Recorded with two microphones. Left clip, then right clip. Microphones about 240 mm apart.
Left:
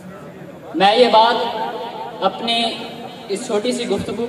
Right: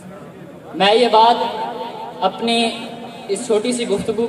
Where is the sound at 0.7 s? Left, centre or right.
Right.